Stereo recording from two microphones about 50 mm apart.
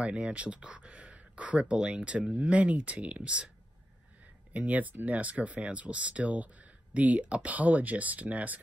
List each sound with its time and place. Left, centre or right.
0.0 s speech: right
4.6 s speech: right